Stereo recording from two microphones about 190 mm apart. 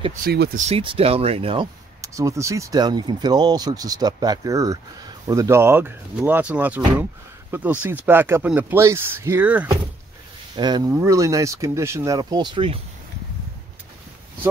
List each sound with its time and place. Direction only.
0.2 s speech: 55° right (ahead or behind)
0.6 s speech: 30° right (ahead or behind)
2.0 s speech: 15° right (ahead or behind)
10.5 s speech: 20° right (ahead or behind)